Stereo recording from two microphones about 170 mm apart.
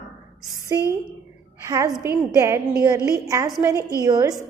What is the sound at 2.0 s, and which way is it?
A woman's voice, 15° right (ahead or behind).